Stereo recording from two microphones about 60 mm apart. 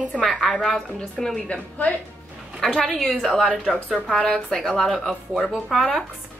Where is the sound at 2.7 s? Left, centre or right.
Centre.